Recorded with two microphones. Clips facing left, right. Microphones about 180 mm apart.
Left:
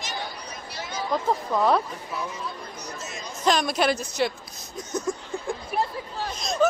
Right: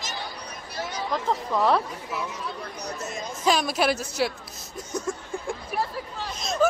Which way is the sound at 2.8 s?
60° right (ahead or behind).